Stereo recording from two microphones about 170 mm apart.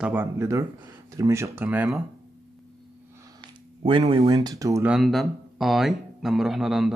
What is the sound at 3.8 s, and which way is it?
Speech, 30° right (ahead or behind).